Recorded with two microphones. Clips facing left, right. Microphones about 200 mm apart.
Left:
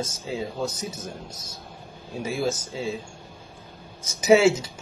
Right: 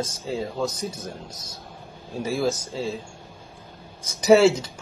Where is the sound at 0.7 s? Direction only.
30° right (ahead or behind).